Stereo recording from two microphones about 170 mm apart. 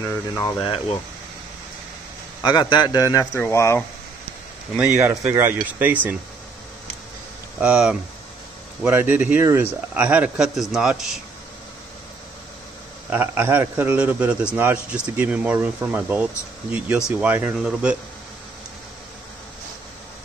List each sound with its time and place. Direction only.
0.0 s speech: 15° left (ahead or behind)
0.6 s speech: 30° left (ahead or behind)
2.4 s a man's voice: 25° left (ahead or behind)
4.7 s a man's voice: 10° right (ahead or behind)
7.6 s a man's voice: 5° right (ahead or behind)
13.1 s a man's voice: 10° right (ahead or behind)